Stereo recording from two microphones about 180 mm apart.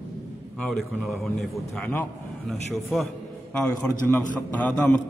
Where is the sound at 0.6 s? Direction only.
Centre (ahead or behind).